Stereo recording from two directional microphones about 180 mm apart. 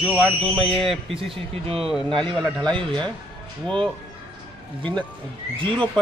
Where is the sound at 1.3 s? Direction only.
30° right (ahead or behind).